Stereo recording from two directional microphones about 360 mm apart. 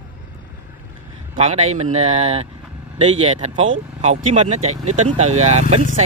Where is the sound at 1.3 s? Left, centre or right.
Centre.